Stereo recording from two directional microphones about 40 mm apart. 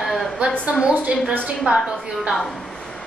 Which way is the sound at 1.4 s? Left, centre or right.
Right.